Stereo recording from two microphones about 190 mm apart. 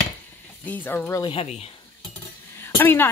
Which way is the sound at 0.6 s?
10° left (ahead or behind).